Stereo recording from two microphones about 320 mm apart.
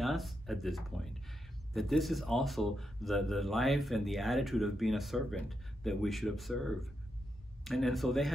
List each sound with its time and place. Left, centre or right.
0.0 s speech: centre